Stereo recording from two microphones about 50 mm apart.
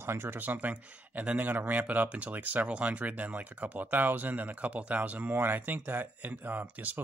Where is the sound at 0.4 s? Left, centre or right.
Right.